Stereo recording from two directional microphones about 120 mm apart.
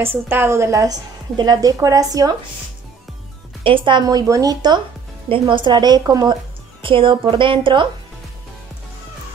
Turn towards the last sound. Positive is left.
turn(degrees=-45)  # may be behind; listen again after turning